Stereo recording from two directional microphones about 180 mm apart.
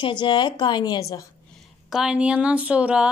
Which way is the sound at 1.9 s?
5° right (ahead or behind).